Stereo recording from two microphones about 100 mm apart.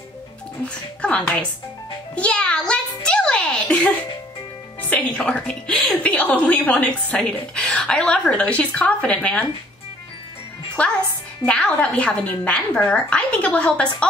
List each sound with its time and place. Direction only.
2.1 s a sound: 10° left (ahead or behind)
4.8 s a woman's voice: 15° left (ahead or behind)
10.8 s a woman's voice: 15° left (ahead or behind)